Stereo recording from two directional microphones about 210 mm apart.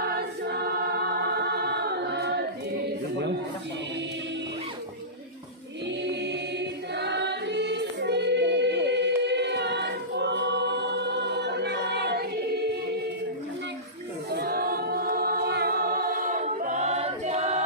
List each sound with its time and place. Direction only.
0.0 s choir: 50° right (ahead or behind)
6.2 s choir: 55° right (ahead or behind)
14.3 s choir: 45° right (ahead or behind); by 17.6 s 30° right (ahead or behind)